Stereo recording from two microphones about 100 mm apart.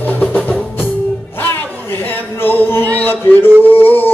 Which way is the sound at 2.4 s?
20° left (ahead or behind).